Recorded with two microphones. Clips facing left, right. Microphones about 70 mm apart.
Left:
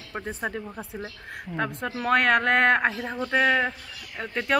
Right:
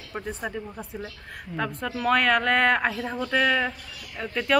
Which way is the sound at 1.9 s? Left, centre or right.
Left.